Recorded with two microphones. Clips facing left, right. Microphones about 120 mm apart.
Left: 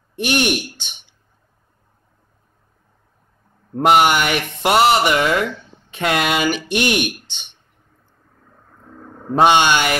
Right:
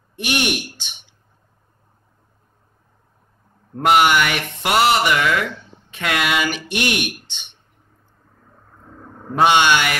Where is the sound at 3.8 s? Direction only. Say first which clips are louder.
Left 1 dB; 25° left (ahead or behind).